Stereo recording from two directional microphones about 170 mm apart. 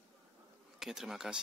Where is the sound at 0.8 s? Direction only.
Centre (ahead or behind).